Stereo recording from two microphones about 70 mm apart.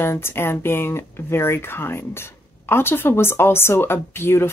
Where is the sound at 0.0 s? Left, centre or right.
Left.